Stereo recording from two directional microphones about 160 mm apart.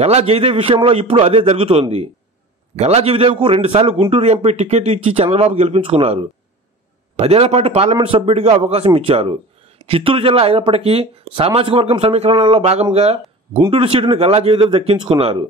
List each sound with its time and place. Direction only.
0.0 s a man's voice: 40° right (ahead or behind)